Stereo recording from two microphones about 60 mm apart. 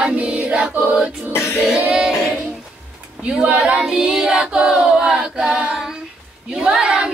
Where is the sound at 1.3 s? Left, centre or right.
Left.